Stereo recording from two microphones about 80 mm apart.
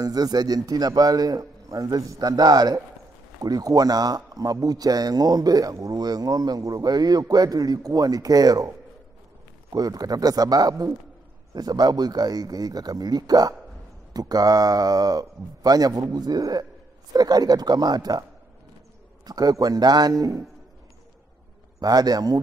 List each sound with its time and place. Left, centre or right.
0.0 s a man's voice: right
19.2 s a man's voice: right
21.7 s a man's voice: right